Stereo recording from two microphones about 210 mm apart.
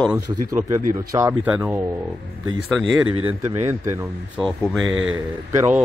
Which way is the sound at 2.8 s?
75° right (ahead or behind).